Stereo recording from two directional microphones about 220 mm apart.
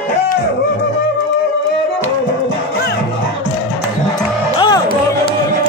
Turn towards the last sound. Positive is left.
turn(degrees=20)  # may be behind; listen again after turning